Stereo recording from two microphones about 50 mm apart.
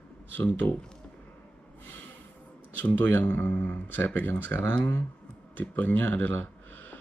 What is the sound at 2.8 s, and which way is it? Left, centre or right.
Speech, left.